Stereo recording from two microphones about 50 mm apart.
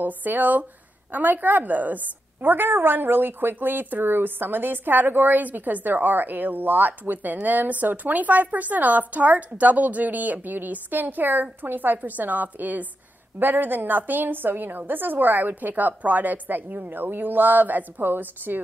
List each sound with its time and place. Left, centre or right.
0.0 s a woman's voice: right